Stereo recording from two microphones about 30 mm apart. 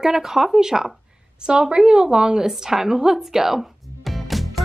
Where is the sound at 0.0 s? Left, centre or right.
Centre.